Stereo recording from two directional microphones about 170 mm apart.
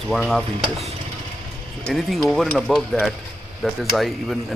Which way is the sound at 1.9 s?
Centre (ahead or behind).